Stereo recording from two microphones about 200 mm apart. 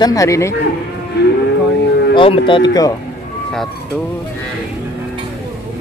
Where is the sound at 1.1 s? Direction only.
55° left (ahead or behind).